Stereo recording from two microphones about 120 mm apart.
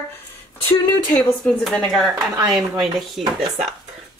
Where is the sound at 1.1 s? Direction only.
5° left (ahead or behind).